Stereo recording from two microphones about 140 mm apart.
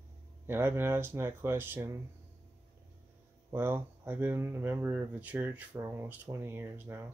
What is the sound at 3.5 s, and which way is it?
Speech, 15° right (ahead or behind).